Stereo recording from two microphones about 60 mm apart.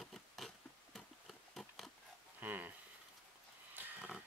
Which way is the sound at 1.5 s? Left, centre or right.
Centre.